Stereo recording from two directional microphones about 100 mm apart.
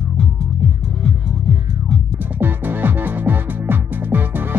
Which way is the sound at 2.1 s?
20° right (ahead or behind).